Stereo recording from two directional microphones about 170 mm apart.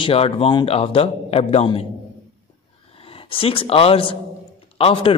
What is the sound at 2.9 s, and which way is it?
Speech, 35° left (ahead or behind).